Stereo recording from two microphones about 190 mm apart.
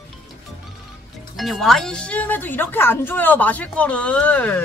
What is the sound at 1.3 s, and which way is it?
Speech, centre (ahead or behind).